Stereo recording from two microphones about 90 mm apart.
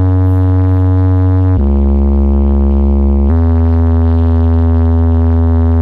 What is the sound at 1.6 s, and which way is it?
Music, 20° right (ahead or behind).